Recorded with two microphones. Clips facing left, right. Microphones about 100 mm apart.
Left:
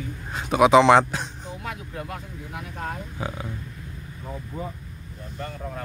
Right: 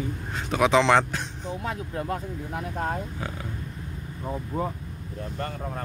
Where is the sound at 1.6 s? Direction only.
35° right (ahead or behind).